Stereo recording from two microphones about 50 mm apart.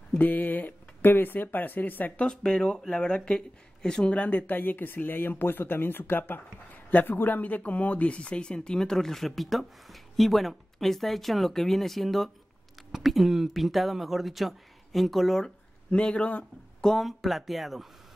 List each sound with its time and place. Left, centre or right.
0.2 s speech: left
2.1 s speech: centre
4.1 s speech: left; by 15.4 s centre
15.4 s speech: centre
16.8 s speech: centre